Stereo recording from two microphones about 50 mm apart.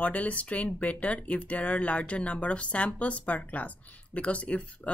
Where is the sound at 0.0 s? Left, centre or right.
Left.